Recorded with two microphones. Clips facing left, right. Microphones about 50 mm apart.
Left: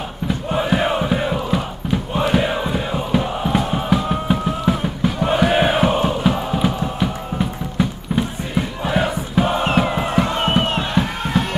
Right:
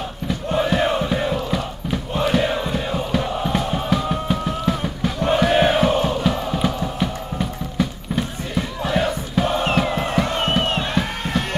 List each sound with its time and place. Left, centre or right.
0.3 s crowd: centre
10.2 s music: centre
11.0 s music: left